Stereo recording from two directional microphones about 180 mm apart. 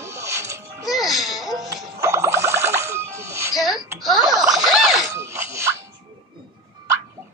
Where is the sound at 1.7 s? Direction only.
15° right (ahead or behind).